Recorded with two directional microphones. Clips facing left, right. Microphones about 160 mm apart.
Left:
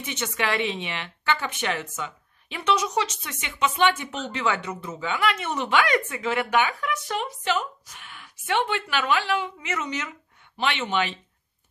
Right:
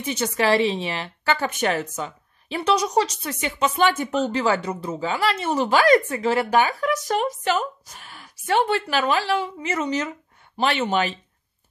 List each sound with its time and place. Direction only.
0.0 s a woman's voice: 35° right (ahead or behind)